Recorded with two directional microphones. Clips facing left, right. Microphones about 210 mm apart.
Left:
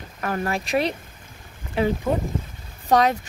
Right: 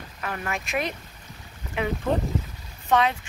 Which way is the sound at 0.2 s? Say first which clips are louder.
Left 6 dB; 35° left (ahead or behind).